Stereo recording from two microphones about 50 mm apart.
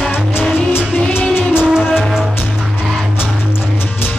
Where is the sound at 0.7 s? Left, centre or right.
Left.